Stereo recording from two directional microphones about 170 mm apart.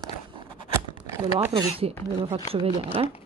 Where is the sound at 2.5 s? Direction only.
35° right (ahead or behind).